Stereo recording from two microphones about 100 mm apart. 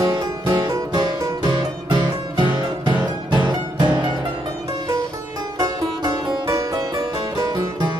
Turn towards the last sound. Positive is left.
turn(degrees=-40)  # may be behind; listen again after turning